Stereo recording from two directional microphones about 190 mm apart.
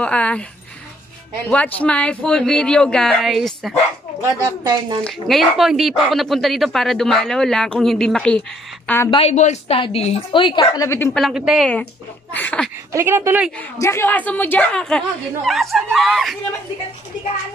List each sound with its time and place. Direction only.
0.0 s a woman's voice: 5° left (ahead or behind)
1.5 s speech: 5° left (ahead or behind)
5.0 s a woman's voice: centre (ahead or behind)
9.1 s a woman's voice: 35° left (ahead or behind); by 11.1 s 15° left (ahead or behind)
11.1 s a woman's voice: centre (ahead or behind)
12.9 s speech: 15° right (ahead or behind)
13.6 s speech: 15° left (ahead or behind)